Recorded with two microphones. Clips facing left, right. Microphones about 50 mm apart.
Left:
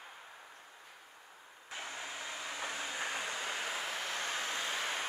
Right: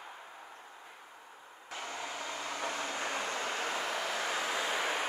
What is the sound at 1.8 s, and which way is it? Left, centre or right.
Vehicle, right.